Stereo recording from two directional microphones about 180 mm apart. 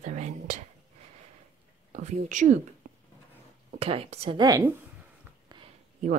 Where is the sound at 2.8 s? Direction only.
45° right (ahead or behind).